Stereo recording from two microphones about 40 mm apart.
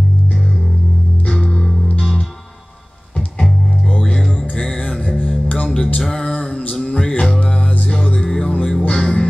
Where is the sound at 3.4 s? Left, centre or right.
Left.